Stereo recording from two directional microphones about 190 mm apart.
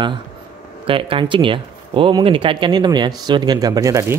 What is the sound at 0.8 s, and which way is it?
Speech, 30° right (ahead or behind).